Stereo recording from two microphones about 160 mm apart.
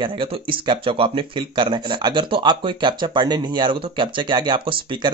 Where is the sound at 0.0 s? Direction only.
30° right (ahead or behind).